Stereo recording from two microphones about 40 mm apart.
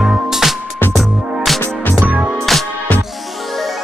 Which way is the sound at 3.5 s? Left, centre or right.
Centre.